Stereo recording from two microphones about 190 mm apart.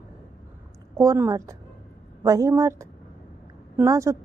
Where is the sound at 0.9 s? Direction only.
15° right (ahead or behind).